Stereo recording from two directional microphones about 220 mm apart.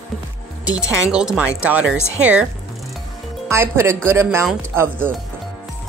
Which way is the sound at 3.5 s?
10° right (ahead or behind).